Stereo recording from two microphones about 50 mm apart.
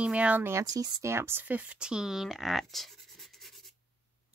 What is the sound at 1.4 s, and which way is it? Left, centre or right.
Speech, right.